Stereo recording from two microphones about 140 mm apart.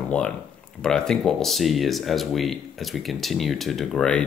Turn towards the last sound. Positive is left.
turn(degrees=5)  # may be behind; listen again after turning